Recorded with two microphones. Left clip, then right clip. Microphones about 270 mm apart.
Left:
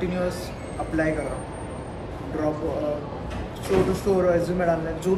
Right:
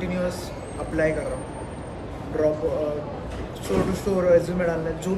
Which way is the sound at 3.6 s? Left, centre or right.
Centre.